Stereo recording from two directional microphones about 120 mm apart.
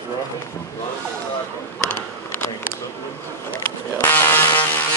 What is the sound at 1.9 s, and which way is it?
Bee, 20° left (ahead or behind).